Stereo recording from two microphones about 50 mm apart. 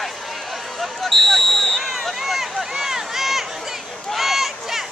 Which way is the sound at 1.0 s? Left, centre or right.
Centre.